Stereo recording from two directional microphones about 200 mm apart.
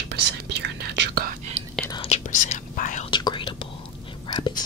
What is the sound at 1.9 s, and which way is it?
Whispering, 30° left (ahead or behind).